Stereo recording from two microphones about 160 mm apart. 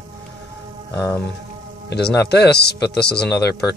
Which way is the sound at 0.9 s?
20° left (ahead or behind).